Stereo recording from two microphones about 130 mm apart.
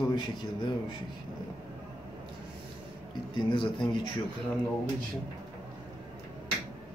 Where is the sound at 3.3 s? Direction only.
40° left (ahead or behind).